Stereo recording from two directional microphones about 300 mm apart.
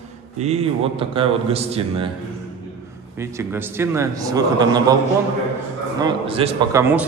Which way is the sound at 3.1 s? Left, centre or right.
Centre.